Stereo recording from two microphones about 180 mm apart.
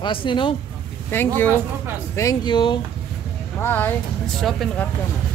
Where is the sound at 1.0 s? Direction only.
10° left (ahead or behind).